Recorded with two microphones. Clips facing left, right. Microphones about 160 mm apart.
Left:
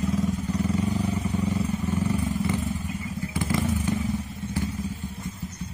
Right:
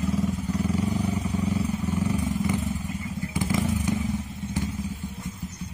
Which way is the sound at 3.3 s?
15° right (ahead or behind).